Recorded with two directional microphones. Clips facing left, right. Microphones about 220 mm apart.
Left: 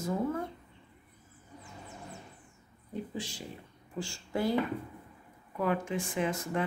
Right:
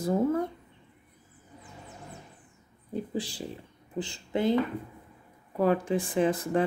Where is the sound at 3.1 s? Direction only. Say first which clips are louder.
Right 6 dB; 35° right (ahead or behind).